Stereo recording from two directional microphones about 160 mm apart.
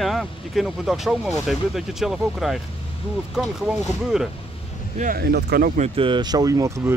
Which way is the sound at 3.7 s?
5° right (ahead or behind).